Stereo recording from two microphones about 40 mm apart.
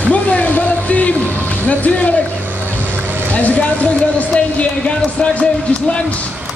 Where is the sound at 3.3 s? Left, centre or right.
Left.